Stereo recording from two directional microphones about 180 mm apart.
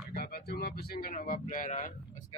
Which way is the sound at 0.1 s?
55° left (ahead or behind).